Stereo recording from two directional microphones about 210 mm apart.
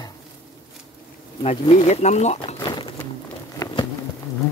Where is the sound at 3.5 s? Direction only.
15° left (ahead or behind).